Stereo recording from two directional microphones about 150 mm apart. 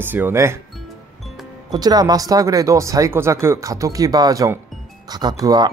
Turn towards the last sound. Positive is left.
turn(degrees=-25)  # may be behind; listen again after turning